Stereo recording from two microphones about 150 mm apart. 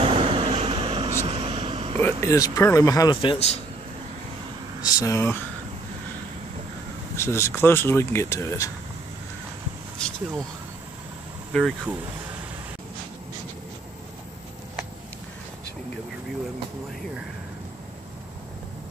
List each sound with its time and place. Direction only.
0.0 s vehicle: 40° right (ahead or behind)
2.0 s speech: 15° left (ahead or behind)
3.2 s a man's voice: 40° left (ahead or behind)
4.8 s speech: 25° left (ahead or behind)
7.2 s speech: 20° left (ahead or behind)
9.9 s speech: 5° left (ahead or behind)
11.5 s speech: 5° left (ahead or behind)